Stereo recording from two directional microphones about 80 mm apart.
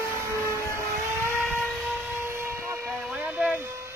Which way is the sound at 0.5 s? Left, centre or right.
Left.